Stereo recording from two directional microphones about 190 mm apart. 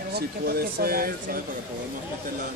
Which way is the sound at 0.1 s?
55° right (ahead or behind).